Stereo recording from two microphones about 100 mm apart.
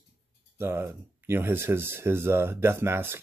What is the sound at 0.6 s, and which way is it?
Speech, 20° right (ahead or behind).